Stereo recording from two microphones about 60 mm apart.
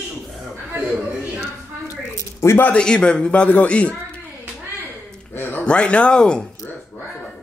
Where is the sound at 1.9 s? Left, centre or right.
Left.